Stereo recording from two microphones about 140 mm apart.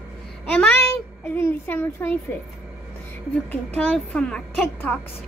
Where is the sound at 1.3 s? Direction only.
15° left (ahead or behind).